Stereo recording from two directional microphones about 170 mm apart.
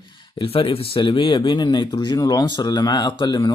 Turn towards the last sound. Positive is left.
turn(degrees=25)  # may be behind; listen again after turning